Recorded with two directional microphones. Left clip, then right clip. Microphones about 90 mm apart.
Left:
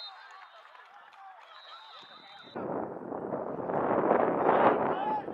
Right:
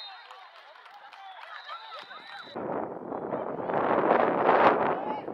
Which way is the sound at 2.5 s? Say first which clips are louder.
Right 2 dB; 65° left (ahead or behind).